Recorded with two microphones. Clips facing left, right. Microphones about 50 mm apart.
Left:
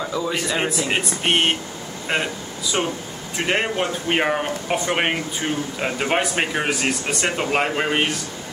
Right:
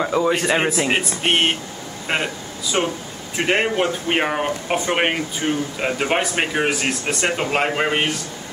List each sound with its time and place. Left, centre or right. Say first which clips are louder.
0.0 s speech: right 5 dB; right
2.1 s speech: even; centre